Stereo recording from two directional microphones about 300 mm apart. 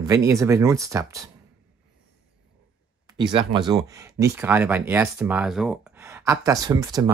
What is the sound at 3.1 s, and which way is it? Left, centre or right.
Speech, centre.